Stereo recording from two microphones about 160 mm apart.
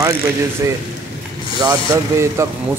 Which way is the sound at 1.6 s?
20° right (ahead or behind).